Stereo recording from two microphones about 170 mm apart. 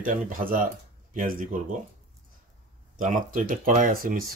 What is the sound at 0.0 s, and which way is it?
Speech, 55° right (ahead or behind).